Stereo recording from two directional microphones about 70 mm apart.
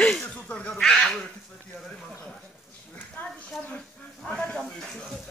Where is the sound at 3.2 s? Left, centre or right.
Left.